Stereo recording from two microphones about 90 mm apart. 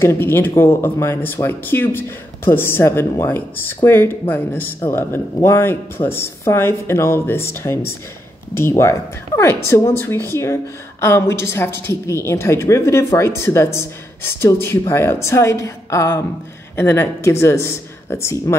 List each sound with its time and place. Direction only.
0.0 s speech: 30° left (ahead or behind)